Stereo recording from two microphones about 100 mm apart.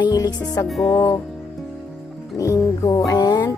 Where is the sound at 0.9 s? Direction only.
35° left (ahead or behind).